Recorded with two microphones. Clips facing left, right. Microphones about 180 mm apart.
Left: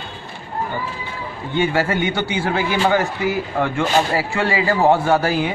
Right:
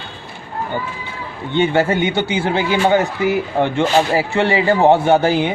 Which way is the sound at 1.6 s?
25° right (ahead or behind).